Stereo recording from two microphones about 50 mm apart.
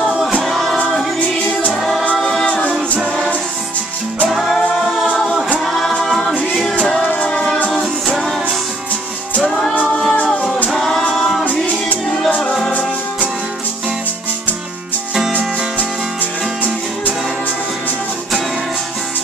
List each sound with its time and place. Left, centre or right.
0.4 s music: centre
4.3 s music: centre
6.0 s a capella: centre
7.2 s music: centre
9.8 s music: centre